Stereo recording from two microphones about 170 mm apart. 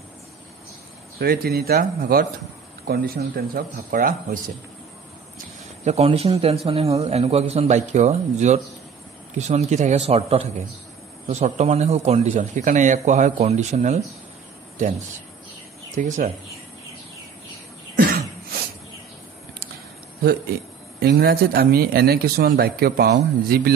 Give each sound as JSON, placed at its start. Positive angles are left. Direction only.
{"t": 1.2, "sound": "a man's voice", "side_deg": -65}
{"t": 5.9, "sound": "a man's voice", "side_deg": -35}
{"t": 17.9, "sound": "cough", "side_deg": -60}
{"t": 21.0, "sound": "a man's voice", "side_deg": -70}